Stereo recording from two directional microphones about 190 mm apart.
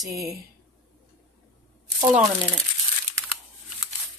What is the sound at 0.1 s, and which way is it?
Speech, 15° right (ahead or behind).